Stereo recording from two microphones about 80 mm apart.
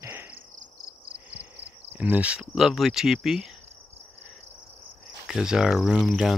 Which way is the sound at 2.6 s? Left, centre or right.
Centre.